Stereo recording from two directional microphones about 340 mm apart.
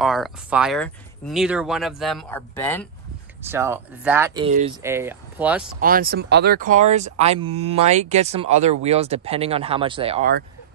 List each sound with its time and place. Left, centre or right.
0.0 s speech: centre
3.4 s speech: centre
5.8 s speech: right